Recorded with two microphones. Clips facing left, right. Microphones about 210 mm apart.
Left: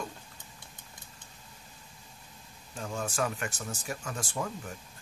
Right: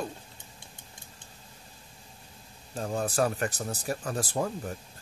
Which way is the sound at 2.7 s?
35° right (ahead or behind).